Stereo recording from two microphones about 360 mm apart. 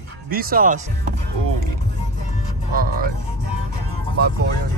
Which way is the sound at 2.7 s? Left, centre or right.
Right.